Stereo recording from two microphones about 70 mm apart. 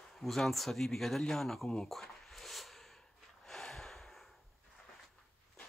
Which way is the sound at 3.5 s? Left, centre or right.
Centre.